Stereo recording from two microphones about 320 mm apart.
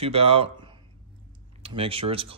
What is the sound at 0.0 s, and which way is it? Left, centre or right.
Speech, centre.